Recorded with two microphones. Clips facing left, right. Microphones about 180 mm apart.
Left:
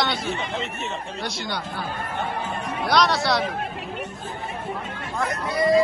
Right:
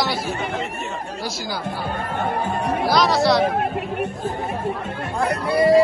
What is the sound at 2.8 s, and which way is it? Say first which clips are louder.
Speech: right 2 dB; centre (ahead or behind).